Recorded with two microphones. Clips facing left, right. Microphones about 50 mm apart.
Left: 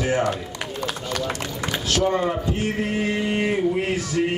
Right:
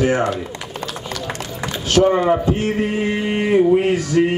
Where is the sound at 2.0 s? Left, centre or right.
Right.